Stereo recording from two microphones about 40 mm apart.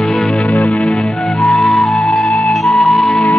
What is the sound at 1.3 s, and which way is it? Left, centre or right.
Music, centre.